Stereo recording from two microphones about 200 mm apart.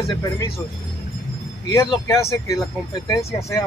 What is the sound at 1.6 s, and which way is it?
Speech, 15° left (ahead or behind).